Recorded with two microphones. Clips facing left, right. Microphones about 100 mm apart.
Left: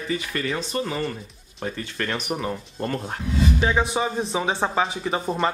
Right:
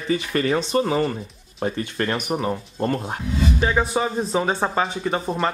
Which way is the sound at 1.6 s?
25° right (ahead or behind).